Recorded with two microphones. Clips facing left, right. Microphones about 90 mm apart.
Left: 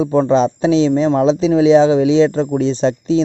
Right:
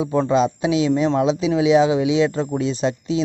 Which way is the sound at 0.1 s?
30° left (ahead or behind).